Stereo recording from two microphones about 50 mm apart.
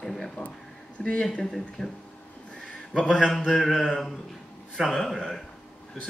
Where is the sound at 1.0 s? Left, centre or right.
Centre.